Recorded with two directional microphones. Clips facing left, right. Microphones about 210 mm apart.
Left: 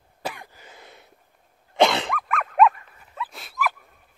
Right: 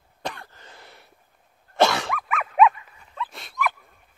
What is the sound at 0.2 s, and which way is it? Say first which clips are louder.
Throat clearing: even; 10° left (ahead or behind).